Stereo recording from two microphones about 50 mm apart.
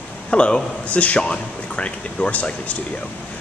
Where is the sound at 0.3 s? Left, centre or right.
Centre.